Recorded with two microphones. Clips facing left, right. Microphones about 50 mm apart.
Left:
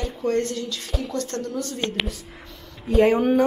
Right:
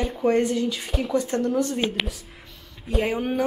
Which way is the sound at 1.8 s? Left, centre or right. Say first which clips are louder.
Right 1 dB; centre.